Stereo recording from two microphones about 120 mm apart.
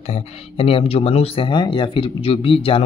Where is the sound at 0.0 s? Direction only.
55° left (ahead or behind).